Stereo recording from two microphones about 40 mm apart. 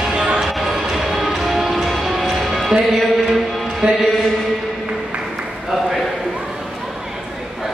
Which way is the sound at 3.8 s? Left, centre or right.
Centre.